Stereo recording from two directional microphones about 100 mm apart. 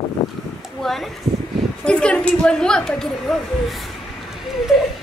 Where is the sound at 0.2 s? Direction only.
45° left (ahead or behind).